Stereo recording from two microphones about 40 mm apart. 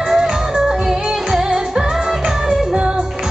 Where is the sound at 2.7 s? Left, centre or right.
Right.